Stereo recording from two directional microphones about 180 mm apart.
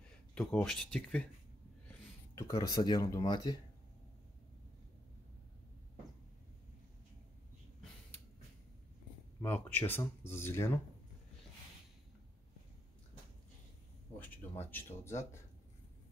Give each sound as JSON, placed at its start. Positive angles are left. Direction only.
{"t": 0.3, "sound": "speech", "side_deg": 5}
{"t": 2.3, "sound": "speech", "side_deg": 15}
{"t": 9.4, "sound": "speech", "side_deg": 10}
{"t": 14.2, "sound": "speech", "side_deg": 10}